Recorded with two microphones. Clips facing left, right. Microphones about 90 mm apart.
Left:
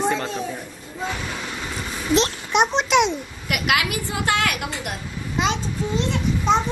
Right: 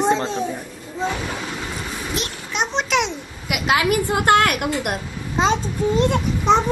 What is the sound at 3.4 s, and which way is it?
Speech, 15° right (ahead or behind).